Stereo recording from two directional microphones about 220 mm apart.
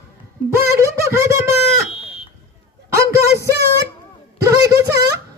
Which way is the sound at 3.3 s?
45° right (ahead or behind).